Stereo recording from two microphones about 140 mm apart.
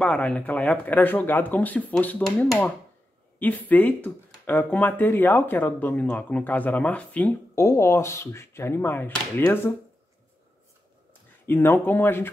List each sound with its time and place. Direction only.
0.0 s speech: 10° left (ahead or behind)
11.4 s speech: 15° left (ahead or behind)